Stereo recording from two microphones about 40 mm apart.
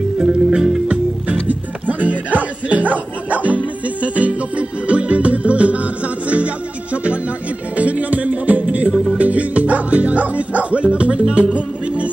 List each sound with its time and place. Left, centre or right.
0.2 s music: right
1.5 s music: right